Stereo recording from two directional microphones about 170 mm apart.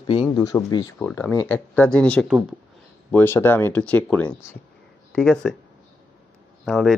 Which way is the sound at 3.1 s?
10° left (ahead or behind).